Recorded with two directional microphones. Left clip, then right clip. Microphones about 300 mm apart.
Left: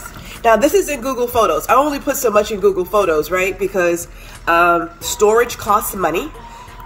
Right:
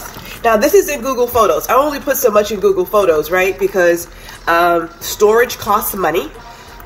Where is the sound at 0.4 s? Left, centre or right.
Left.